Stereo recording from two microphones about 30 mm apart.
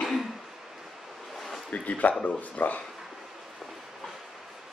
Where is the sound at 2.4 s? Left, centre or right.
Left.